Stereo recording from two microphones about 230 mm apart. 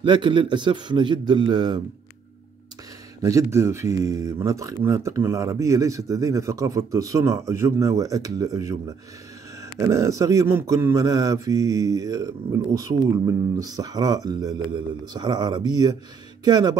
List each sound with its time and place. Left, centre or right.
0.0 s a man's voice: right
3.2 s mantra: centre